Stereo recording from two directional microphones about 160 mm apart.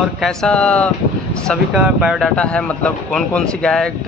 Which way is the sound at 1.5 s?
5° right (ahead or behind).